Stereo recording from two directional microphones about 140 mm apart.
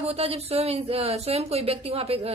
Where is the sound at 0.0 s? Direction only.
45° right (ahead or behind).